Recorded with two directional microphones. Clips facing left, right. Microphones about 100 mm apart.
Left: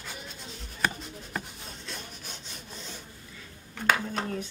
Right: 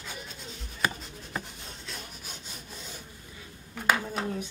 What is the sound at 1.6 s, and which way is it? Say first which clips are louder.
Rub: left 1 dB; centre (ahead or behind).